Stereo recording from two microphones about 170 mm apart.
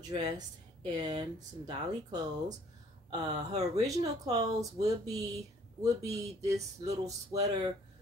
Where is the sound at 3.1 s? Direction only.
20° right (ahead or behind).